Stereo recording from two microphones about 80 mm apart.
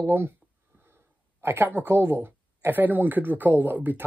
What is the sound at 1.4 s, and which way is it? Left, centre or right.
Speech, right.